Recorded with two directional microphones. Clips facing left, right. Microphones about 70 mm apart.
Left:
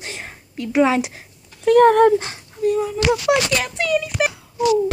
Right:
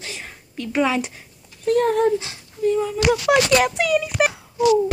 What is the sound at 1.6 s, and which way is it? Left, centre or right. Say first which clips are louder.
Speech: left 6 dB; left.